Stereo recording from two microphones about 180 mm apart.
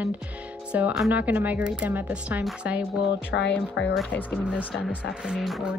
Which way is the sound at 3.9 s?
10° left (ahead or behind).